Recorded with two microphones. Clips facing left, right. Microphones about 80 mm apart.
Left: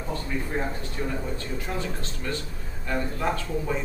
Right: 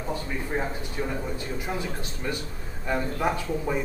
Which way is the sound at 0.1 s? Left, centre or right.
Centre.